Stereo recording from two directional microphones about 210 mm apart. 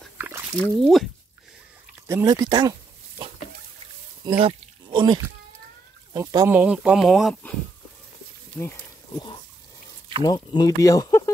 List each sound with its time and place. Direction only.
0.6 s speech: centre (ahead or behind)
2.0 s speech: 15° right (ahead or behind)
4.2 s a sound: 25° right (ahead or behind)
6.1 s speech: 15° right (ahead or behind); by 7.5 s centre (ahead or behind)
8.5 s wild animals: 10° left (ahead or behind)
10.2 s speech: 20° left (ahead or behind)